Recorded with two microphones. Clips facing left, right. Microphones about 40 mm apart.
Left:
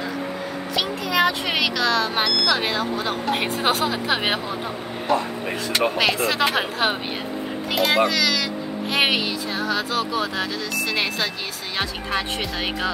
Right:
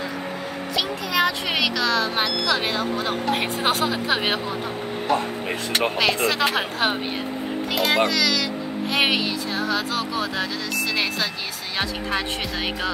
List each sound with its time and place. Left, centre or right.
0.7 s speech: centre
5.7 s speech: right
5.9 s speech: centre